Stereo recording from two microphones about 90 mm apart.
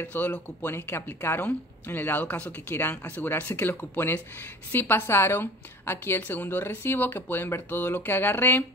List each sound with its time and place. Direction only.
0.0 s a woman's voice: 20° left (ahead or behind)